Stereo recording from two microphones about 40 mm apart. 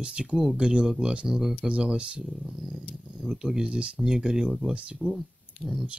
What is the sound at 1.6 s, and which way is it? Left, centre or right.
Speech, right.